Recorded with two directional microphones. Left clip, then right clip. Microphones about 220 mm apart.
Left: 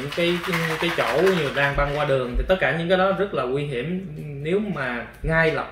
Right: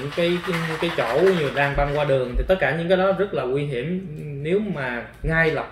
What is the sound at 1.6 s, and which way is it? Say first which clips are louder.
Speech: right 1 dB; 5° right (ahead or behind).